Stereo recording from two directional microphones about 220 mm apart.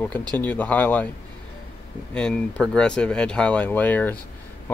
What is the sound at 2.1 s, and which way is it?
Speech, 5° left (ahead or behind).